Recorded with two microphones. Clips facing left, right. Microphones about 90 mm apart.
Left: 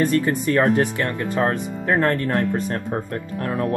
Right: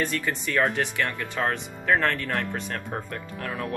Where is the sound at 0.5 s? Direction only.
30° left (ahead or behind).